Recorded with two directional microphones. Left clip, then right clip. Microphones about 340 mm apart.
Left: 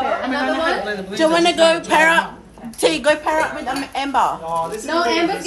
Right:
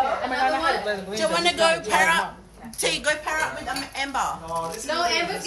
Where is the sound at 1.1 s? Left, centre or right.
Left.